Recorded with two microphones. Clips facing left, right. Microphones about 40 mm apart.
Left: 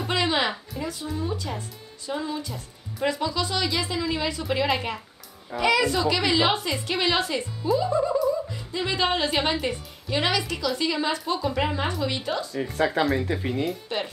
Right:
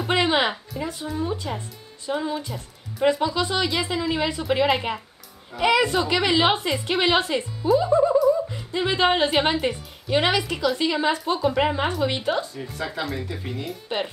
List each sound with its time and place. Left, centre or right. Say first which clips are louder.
0.1 s a sound: right 3 dB; right
1.0 s a woman's voice: right 4 dB; right
1.3 s a woman's voice: right 2 dB; right
12.5 s speech: left 6 dB; left
13.8 s a woman's voice: right 2 dB; right